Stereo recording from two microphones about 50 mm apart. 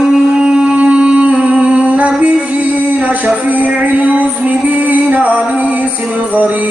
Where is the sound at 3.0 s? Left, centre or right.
Right.